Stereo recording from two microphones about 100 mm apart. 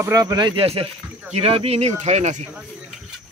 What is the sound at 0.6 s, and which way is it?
Speech, 75° right (ahead or behind).